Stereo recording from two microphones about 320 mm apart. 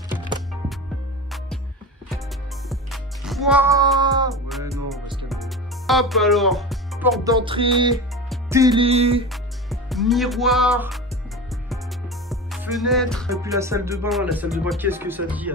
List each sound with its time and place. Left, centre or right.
2.7 s music: centre
4.3 s music: centre
7.2 s music: centre
9.3 s music: centre
12.3 s music: centre
13.3 s speech: centre